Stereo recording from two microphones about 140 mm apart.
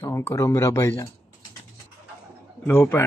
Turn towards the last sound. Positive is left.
turn(degrees=15)  # may be behind; listen again after turning